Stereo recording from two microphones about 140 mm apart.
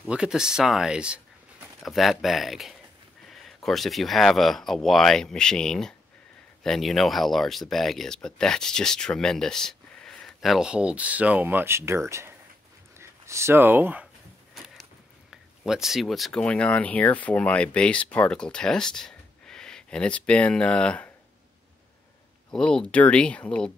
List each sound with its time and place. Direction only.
0.0 s speech: 5° right (ahead or behind)
14.5 s a sound: centre (ahead or behind)
15.6 s speech: centre (ahead or behind)
22.5 s speech: 5° left (ahead or behind)